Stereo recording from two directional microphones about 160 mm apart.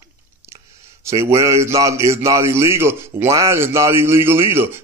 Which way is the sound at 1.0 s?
15° right (ahead or behind).